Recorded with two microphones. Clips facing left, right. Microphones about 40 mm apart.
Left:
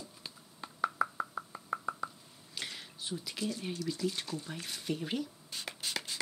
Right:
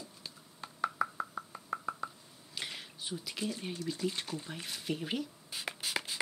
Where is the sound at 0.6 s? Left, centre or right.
Centre.